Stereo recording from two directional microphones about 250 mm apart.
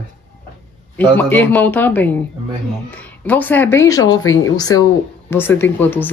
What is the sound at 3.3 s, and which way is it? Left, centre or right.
Speech, centre.